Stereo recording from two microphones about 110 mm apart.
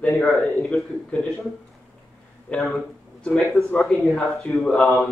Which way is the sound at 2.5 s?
5° left (ahead or behind).